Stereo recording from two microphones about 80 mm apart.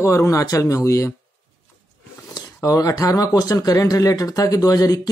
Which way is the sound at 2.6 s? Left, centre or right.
Left.